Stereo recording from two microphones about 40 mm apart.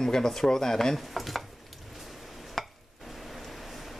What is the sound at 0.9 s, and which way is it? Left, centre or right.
Speech, centre.